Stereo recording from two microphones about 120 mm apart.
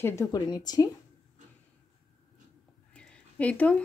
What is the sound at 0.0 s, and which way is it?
Speech, 25° left (ahead or behind).